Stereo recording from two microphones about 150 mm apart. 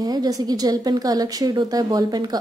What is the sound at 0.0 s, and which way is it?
A woman's voice, 25° right (ahead or behind).